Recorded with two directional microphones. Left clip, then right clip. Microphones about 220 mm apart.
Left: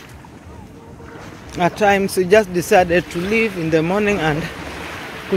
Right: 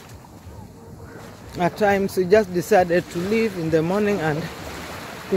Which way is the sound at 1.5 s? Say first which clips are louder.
Left 4 dB; 10° left (ahead or behind).